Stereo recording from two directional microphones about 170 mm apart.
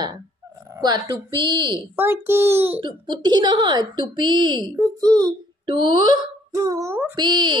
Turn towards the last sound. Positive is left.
turn(degrees=-25)  # may be behind; listen again after turning